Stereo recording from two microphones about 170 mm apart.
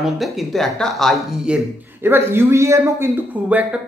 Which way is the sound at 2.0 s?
15° right (ahead or behind).